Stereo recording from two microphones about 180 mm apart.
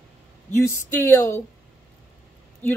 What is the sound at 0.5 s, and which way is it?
Speech, 15° left (ahead or behind).